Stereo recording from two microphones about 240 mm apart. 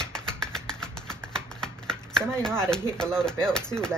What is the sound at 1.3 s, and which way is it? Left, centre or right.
Typing, centre.